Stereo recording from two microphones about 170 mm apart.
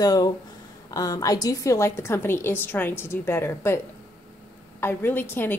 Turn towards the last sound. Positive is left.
turn(degrees=10)  # may be behind; listen again after turning